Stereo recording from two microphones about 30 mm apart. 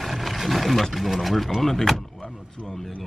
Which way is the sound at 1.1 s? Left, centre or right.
Centre.